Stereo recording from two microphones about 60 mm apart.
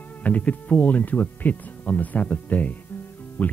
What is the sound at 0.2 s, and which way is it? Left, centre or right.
Speech, left.